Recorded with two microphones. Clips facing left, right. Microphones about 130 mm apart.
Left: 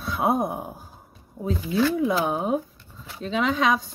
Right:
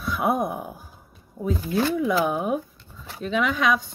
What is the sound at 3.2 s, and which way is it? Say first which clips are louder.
Speech: even; 30° left (ahead or behind).